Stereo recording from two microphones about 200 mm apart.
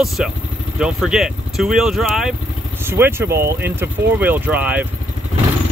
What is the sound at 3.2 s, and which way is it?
Speech, 50° right (ahead or behind).